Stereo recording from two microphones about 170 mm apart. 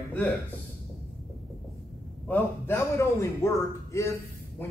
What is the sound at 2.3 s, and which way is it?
A man's voice, 15° left (ahead or behind).